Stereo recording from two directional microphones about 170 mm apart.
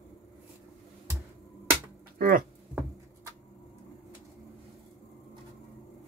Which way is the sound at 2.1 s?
60° right (ahead or behind).